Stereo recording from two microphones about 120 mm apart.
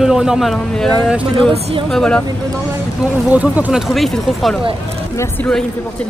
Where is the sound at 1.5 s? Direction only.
60° right (ahead or behind).